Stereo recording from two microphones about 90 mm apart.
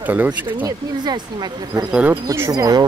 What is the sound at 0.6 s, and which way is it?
Speech, 50° right (ahead or behind).